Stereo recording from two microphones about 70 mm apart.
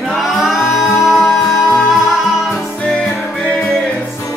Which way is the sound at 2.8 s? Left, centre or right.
Centre.